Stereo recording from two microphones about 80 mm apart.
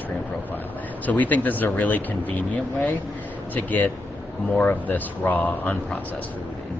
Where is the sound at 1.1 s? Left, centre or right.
Left.